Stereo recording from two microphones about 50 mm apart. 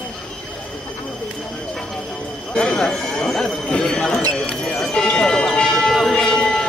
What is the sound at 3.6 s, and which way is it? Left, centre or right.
Speech, centre.